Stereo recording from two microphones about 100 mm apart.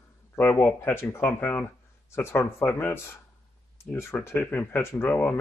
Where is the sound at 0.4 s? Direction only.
20° left (ahead or behind).